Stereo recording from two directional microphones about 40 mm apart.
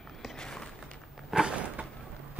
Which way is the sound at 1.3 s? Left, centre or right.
Centre.